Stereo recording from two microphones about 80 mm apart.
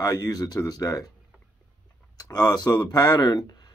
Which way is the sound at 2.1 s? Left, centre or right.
Left.